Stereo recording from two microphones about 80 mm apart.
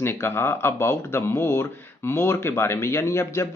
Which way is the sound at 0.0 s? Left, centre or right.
Left.